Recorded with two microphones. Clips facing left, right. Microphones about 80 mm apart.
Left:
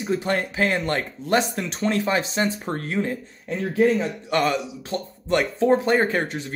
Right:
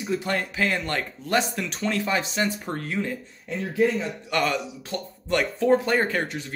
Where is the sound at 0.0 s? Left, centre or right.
Left.